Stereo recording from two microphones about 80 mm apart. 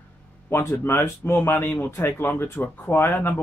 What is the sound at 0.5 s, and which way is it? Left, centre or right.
Speech, left.